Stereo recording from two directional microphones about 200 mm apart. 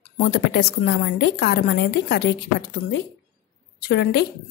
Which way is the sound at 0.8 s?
55° left (ahead or behind).